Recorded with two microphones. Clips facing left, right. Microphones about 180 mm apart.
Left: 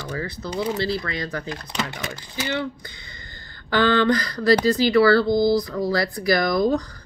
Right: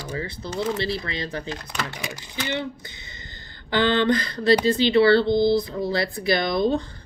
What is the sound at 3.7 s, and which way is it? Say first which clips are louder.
Speech: left 1 dB; 20° right (ahead or behind).